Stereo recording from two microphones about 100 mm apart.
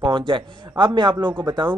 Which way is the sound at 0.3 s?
55° right (ahead or behind).